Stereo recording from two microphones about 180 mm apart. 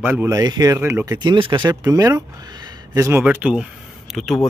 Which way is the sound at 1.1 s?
25° right (ahead or behind).